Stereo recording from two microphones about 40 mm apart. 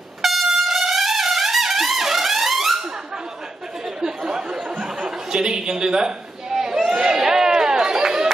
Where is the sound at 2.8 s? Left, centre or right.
Centre.